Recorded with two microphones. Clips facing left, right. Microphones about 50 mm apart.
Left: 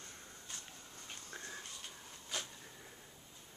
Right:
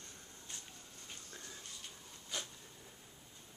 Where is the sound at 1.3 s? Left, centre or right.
Left.